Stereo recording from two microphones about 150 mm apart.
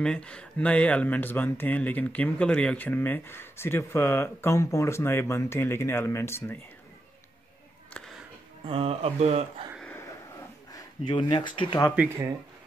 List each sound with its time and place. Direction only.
0.0 s speech: 5° left (ahead or behind)
7.9 s a sound: 5° left (ahead or behind)
8.6 s speech: 40° right (ahead or behind)
10.7 s speech: 30° left (ahead or behind)